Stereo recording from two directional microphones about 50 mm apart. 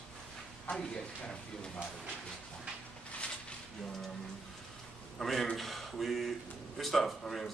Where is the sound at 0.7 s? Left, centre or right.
Left.